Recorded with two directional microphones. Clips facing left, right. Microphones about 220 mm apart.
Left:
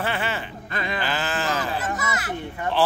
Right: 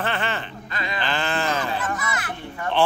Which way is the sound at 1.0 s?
5° left (ahead or behind).